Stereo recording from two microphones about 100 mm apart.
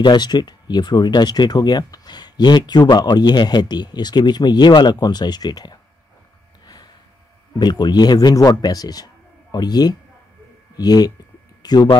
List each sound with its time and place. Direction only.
0.0 s speech: 50° left (ahead or behind)
7.5 s speech: 45° left (ahead or behind)